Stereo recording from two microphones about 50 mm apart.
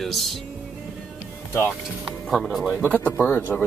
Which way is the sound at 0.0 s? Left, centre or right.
Centre.